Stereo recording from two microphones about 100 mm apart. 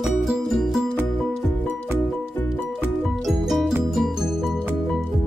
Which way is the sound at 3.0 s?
Centre (ahead or behind).